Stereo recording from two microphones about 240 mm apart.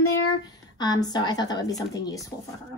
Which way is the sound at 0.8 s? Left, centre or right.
Centre.